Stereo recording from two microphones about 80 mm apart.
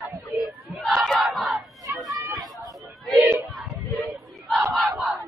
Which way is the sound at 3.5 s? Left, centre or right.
Centre.